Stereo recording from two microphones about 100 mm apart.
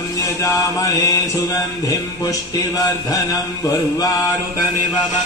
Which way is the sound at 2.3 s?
35° left (ahead or behind).